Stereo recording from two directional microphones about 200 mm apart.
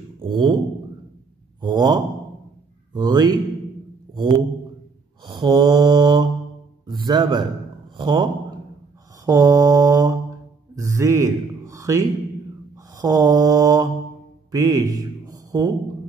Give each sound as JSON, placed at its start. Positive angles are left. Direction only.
{"t": 0.2, "sound": "speech", "side_deg": -25}
{"t": 1.6, "sound": "speech", "side_deg": -20}
{"t": 4.1, "sound": "a sound", "side_deg": -25}
{"t": 5.2, "sound": "mantra", "side_deg": -20}
{"t": 6.9, "sound": "a man's voice", "side_deg": -20}
{"t": 9.2, "sound": "mantra", "side_deg": -15}
{"t": 10.7, "sound": "a man's voice", "side_deg": -15}
{"t": 12.9, "sound": "mantra", "side_deg": -15}
{"t": 14.5, "sound": "a sound", "side_deg": -15}